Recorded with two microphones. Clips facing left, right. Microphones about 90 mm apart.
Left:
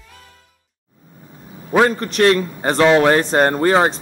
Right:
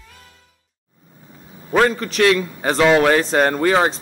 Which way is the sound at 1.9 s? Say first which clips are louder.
Left 2 dB; 40° left (ahead or behind).